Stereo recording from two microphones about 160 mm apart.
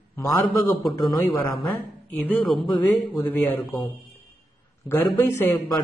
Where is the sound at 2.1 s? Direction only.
10° left (ahead or behind).